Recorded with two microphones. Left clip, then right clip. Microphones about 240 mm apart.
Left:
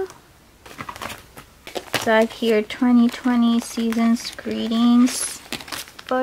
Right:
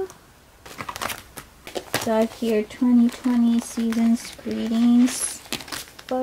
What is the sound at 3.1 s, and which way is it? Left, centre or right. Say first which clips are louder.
Speech: left 2 dB; centre.